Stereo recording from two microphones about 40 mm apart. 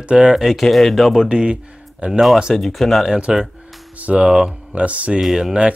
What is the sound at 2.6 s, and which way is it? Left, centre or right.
Speech, centre.